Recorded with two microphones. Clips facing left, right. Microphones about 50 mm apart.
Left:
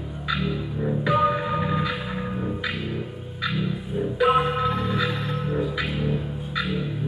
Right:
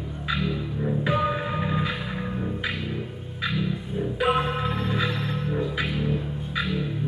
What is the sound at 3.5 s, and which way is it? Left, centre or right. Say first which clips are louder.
Music: even; centre.